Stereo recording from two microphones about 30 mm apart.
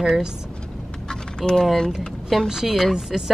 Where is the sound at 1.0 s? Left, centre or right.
Left.